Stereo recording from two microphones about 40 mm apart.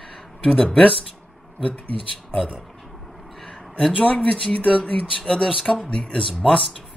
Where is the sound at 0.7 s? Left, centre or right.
Left.